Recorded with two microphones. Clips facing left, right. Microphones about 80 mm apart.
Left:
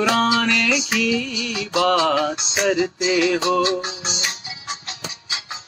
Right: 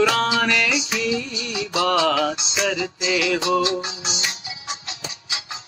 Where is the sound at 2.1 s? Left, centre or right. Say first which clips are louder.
Left 1 dB; centre.